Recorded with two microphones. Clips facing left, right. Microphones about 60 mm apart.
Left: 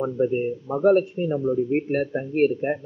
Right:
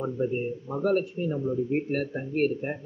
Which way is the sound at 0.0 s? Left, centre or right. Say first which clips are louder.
Left 5 dB; left.